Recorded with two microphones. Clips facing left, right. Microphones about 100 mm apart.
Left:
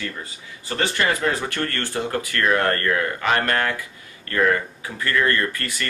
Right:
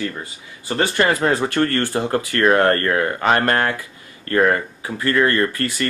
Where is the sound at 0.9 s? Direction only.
35° right (ahead or behind).